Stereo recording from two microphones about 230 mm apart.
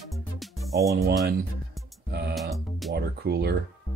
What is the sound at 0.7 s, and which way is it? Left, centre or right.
Speech, centre.